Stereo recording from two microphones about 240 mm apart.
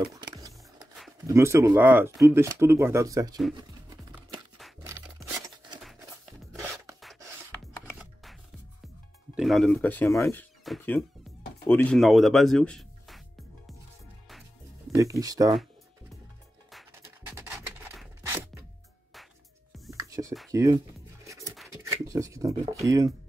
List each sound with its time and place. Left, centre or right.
0.0 s a sound: centre
1.2 s speech: centre
3.5 s music: centre
8.0 s music: centre
9.3 s speech: centre
15.0 s speech: centre
17.3 s rub: centre
19.9 s music: centre
21.2 s scratch: centre
21.8 s speech: centre